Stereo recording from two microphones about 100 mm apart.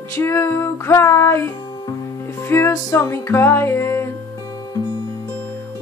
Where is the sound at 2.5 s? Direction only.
30° left (ahead or behind).